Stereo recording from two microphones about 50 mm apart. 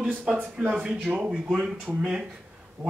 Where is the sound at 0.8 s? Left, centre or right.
Right.